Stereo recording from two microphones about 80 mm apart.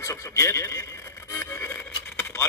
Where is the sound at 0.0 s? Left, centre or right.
Left.